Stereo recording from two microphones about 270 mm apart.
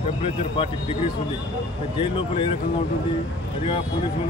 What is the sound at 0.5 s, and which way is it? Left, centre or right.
Speech, left.